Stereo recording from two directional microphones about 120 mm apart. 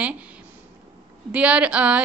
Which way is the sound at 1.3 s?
10° right (ahead or behind).